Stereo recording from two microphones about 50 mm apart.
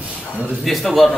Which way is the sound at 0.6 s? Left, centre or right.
Centre.